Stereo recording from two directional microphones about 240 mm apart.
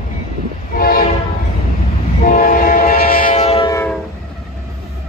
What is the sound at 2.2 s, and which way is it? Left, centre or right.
Train, left.